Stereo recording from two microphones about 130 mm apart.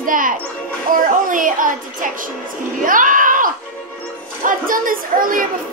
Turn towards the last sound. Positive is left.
turn(degrees=-90)